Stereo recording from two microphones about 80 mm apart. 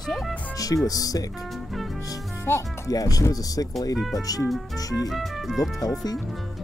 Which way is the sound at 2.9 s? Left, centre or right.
Left.